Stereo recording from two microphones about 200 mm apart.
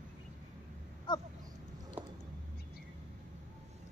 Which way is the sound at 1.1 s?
20° left (ahead or behind).